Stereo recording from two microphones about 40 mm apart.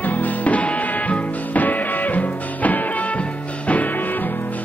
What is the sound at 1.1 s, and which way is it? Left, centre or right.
Music, left.